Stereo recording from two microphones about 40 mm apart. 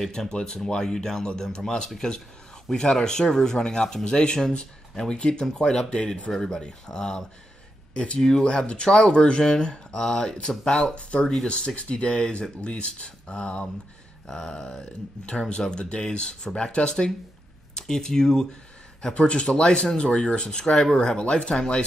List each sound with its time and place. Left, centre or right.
0.0 s speech: centre
7.9 s speech: left
14.2 s speech: centre
19.1 s speech: left